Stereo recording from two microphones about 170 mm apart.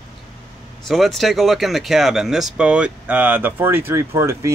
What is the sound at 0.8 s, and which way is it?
Speech, centre (ahead or behind).